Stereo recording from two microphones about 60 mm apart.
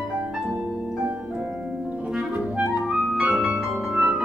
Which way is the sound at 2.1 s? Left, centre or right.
Centre.